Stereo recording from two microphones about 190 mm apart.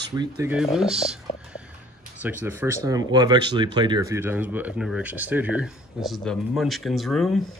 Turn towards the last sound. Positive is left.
turn(degrees=0)  # may be behind; listen again after turning